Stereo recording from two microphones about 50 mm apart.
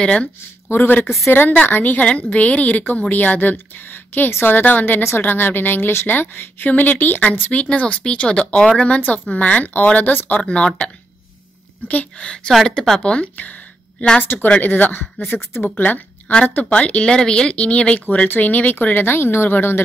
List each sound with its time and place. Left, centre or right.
0.0 s speech: left
0.7 s a woman's voice: left
5.9 s a woman's voice: left
6.1 s speech: left
10.4 s speech: left
12.2 s speech: centre
13.0 s a sound: left
14.2 s speech: left
16.6 s speech: left